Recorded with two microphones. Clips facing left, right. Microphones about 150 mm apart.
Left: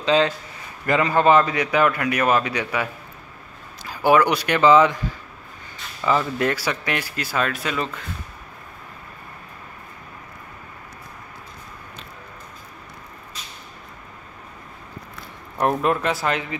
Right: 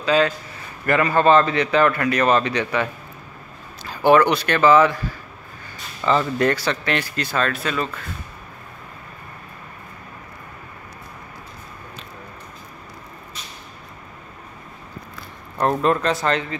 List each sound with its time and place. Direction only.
0.0 s a man's voice: 20° left (ahead or behind)
6.0 s a man's voice: 5° left (ahead or behind)
15.7 s a man's voice: 10° left (ahead or behind)